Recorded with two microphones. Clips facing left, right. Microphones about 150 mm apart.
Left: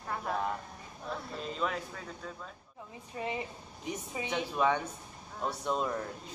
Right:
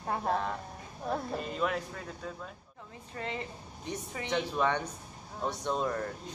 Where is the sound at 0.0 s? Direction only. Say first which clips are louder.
Right 4 dB; 40° right (ahead or behind).